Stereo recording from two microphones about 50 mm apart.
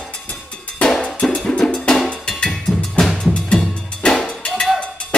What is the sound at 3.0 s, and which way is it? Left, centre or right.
Percussion, centre.